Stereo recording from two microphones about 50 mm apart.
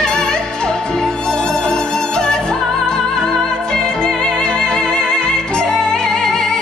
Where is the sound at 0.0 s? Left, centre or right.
Centre.